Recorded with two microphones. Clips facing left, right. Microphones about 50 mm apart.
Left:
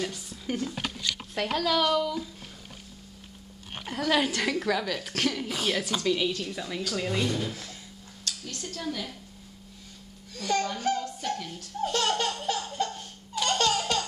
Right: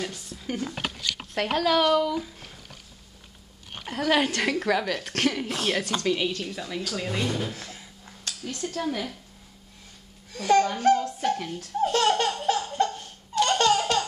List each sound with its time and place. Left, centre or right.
0.0 s speech: centre
3.8 s speech: centre
5.5 s speech: centre
7.5 s a sound: centre
10.3 s speech: centre
11.1 s speech: right
11.9 s laughter: centre
13.5 s baby laughter: centre